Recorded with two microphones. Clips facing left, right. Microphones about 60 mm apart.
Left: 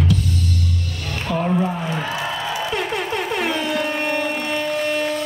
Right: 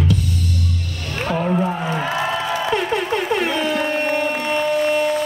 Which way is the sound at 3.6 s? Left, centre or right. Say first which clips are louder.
Right 2 dB; right.